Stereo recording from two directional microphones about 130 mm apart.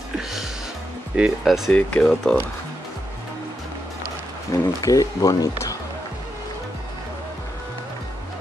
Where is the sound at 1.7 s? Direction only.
10° left (ahead or behind).